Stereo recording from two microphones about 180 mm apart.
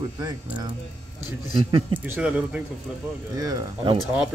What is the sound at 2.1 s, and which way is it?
Speech, 5° right (ahead or behind).